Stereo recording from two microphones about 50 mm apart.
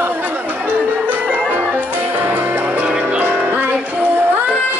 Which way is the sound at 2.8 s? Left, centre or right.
Right.